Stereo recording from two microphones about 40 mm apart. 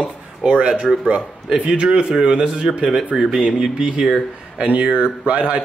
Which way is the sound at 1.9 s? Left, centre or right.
Centre.